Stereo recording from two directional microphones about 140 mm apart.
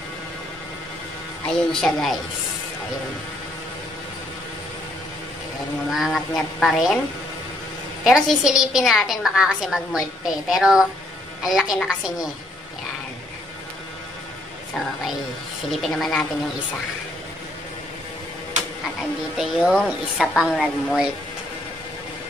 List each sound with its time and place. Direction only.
1.7 s a woman's voice: 5° left (ahead or behind)
5.9 s a woman's voice: centre (ahead or behind)
8.0 s a woman's voice: 5° right (ahead or behind)
15.7 s a woman's voice: centre (ahead or behind)
18.9 s a woman's voice: 5° right (ahead or behind)